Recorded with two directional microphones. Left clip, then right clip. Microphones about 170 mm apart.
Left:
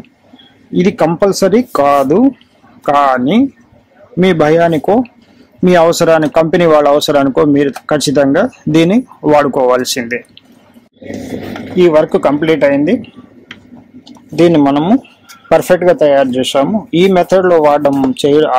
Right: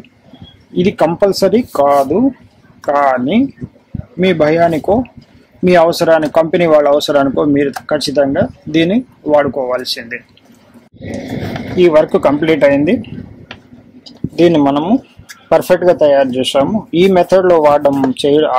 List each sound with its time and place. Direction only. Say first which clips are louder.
0.7 s speech: left 1 dB; 20° left (ahead or behind)
2.8 s speech: left 2 dB; 15° left (ahead or behind)
11.7 s speech: left 1 dB; 15° left (ahead or behind); by 13.0 s centre (ahead or behind)
14.3 s speech: left 1 dB; 15° left (ahead or behind)